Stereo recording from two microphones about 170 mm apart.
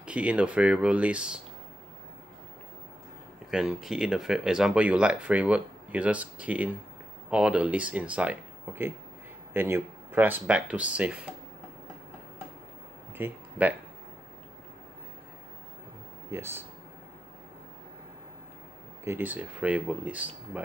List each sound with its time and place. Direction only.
0.0 s speech: 5° right (ahead or behind)
3.4 s speech: 5° right (ahead or behind)
13.2 s speech: 10° right (ahead or behind)
16.3 s speech: 15° right (ahead or behind)
19.0 s speech: 10° right (ahead or behind)